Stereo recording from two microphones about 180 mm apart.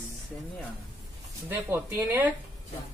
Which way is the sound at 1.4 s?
15° right (ahead or behind).